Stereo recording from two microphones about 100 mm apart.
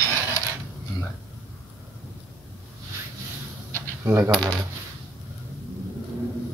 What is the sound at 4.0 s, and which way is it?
Speech, 25° right (ahead or behind).